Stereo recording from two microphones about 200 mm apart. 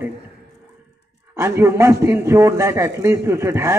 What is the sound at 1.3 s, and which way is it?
A man's voice, 15° right (ahead or behind).